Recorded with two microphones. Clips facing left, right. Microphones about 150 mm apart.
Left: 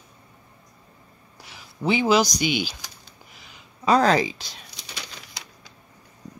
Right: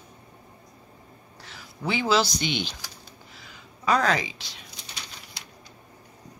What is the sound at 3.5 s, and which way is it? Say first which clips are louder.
Speech: left 4 dB; 30° left (ahead or behind).